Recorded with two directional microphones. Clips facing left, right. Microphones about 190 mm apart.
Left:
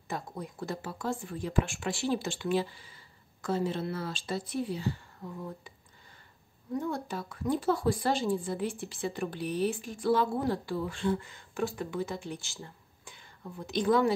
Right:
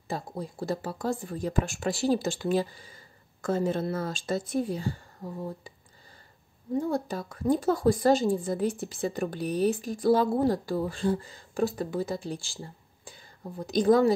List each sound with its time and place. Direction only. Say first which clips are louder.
0.1 s a woman's voice: right 3 dB; 35° right (ahead or behind)
6.7 s a woman's voice: right 5 dB; 35° right (ahead or behind)